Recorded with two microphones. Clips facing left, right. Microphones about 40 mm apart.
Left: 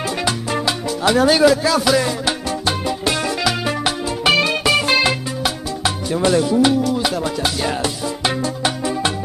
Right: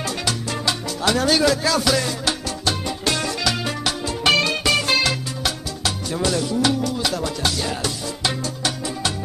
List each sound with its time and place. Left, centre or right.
0.2 s salsa music: centre
4.3 s music: centre
6.8 s music: centre